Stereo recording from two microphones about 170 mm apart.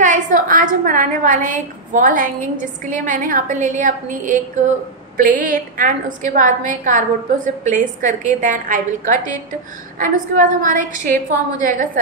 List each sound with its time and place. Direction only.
0.0 s a woman's voice: 50° right (ahead or behind)